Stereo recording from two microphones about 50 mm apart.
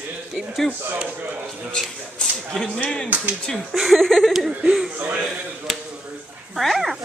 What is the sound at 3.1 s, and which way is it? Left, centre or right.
Speech, right.